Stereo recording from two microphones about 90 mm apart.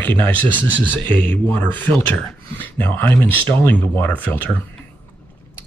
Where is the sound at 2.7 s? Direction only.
20° left (ahead or behind).